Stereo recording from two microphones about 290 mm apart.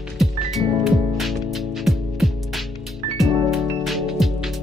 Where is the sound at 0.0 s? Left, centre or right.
Centre.